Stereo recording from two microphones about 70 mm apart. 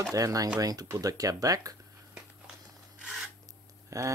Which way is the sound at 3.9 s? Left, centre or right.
Right.